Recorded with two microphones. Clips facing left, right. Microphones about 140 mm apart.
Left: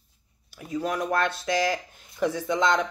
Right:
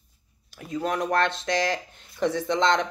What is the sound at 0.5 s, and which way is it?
Speech, 5° left (ahead or behind).